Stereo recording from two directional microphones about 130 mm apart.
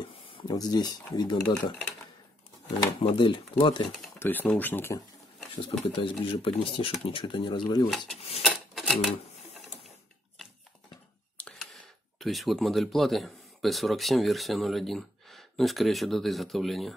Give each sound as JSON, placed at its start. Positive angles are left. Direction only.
{"t": 0.0, "sound": "speech", "side_deg": 40}
{"t": 3.0, "sound": "speech", "side_deg": 45}
{"t": 4.2, "sound": "speech", "side_deg": 15}
{"t": 5.6, "sound": "speech", "side_deg": 40}
{"t": 8.7, "sound": "typewriter", "side_deg": 0}
{"t": 11.3, "sound": "speech", "side_deg": 5}